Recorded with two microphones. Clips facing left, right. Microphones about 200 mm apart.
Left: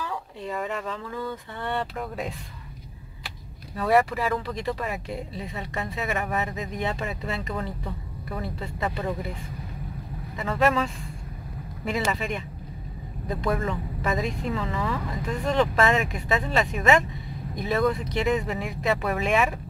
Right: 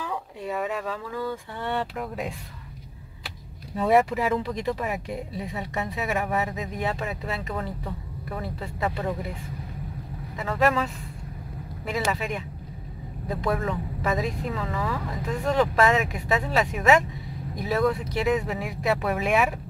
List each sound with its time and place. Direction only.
0.0 s a sound: 15° right (ahead or behind)
0.5 s speech: 5° right (ahead or behind)
3.7 s speech: 20° right (ahead or behind); by 9.1 s centre (ahead or behind)
10.3 s speech: centre (ahead or behind)